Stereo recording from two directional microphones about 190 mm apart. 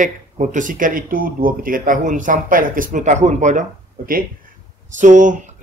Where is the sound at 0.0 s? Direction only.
40° right (ahead or behind).